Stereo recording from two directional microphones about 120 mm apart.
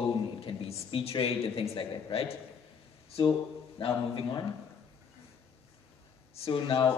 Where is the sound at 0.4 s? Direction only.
55° left (ahead or behind).